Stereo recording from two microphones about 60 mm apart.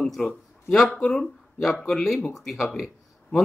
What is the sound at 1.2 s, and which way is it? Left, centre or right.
Speech, centre.